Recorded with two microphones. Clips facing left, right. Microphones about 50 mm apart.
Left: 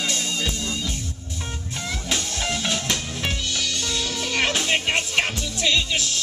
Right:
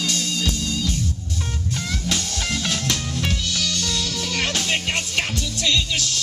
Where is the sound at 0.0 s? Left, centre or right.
Left.